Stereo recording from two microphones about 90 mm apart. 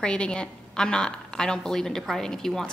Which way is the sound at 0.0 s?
10° left (ahead or behind).